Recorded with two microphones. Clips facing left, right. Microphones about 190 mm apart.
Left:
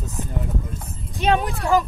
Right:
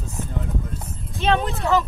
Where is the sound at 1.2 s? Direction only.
15° left (ahead or behind).